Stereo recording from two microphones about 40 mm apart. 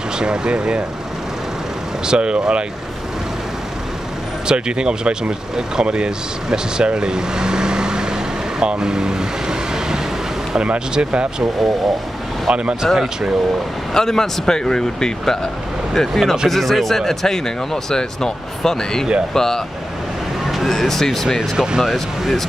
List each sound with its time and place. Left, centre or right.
0.2 s speech: right
2.0 s speech: right
4.5 s speech: right
10.6 s speech: right
12.5 s speech: centre
13.9 s speech: centre
20.7 s speech: centre
21.4 s speech: centre